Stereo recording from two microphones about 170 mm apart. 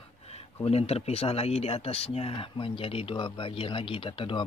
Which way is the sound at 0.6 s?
35° left (ahead or behind).